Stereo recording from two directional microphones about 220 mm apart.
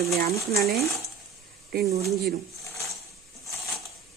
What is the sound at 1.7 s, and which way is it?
Speech, 45° right (ahead or behind).